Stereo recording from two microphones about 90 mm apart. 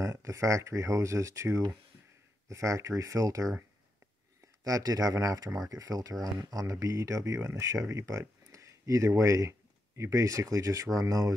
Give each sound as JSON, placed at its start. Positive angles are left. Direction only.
{"t": 0.0, "sound": "speech", "side_deg": -35}
{"t": 4.6, "sound": "speech", "side_deg": -40}